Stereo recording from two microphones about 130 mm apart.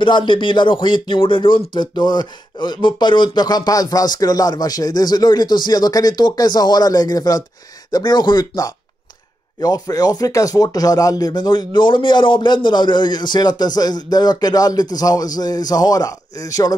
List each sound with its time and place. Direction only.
0.0 s speech: 40° left (ahead or behind)